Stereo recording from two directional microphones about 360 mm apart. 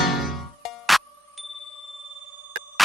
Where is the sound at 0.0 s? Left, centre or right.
Centre.